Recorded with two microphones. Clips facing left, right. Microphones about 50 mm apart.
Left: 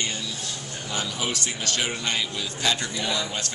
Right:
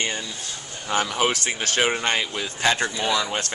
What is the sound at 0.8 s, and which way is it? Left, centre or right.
Speech, right.